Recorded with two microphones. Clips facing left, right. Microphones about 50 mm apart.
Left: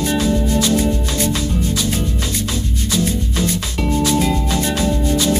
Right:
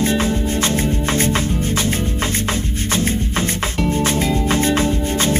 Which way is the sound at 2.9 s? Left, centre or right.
Right.